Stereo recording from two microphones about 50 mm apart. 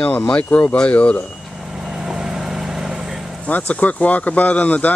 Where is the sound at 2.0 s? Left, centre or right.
Centre.